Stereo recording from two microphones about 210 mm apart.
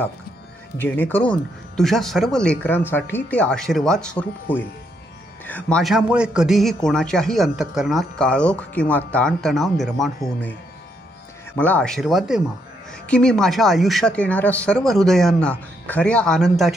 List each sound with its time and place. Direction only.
0.7 s a man's voice: 10° left (ahead or behind)
11.5 s a man's voice: 5° left (ahead or behind)